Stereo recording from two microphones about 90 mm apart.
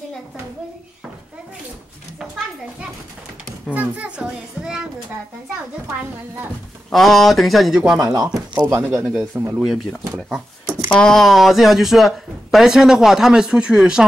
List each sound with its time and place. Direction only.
2.1 s a sound: 5° right (ahead or behind)
6.9 s speech: centre (ahead or behind)
8.0 s speech: 45° right (ahead or behind)
8.6 s speech: 30° right (ahead or behind)
10.9 s speech: 5° left (ahead or behind)